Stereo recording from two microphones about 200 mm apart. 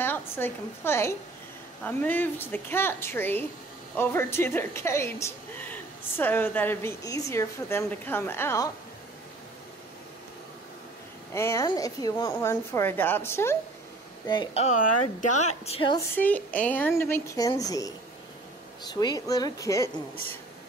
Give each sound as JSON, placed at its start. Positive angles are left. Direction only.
{"t": 0.0, "sound": "a woman's voice", "side_deg": 10}
{"t": 11.3, "sound": "a woman's voice", "side_deg": 15}
{"t": 14.6, "sound": "a woman's voice", "side_deg": 40}
{"t": 16.2, "sound": "a woman's voice", "side_deg": 10}